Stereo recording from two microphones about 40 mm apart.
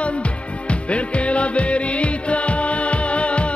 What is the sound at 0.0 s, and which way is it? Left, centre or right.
Music, left.